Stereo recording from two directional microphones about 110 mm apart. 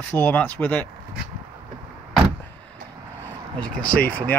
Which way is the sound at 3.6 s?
10° left (ahead or behind).